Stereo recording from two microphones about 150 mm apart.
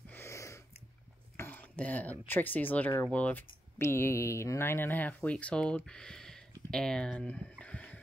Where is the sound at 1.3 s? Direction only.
15° left (ahead or behind).